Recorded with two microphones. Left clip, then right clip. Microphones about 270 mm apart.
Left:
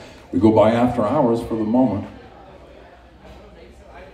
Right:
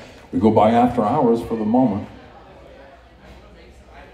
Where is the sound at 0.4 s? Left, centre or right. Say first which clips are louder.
Even; centre.